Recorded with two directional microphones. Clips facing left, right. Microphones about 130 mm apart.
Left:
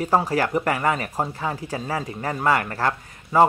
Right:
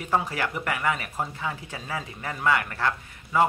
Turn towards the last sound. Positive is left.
turn(degrees=35)  # may be behind; listen again after turning